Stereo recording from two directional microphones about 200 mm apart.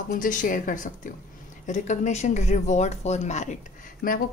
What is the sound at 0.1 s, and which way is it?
A woman's voice, 40° left (ahead or behind).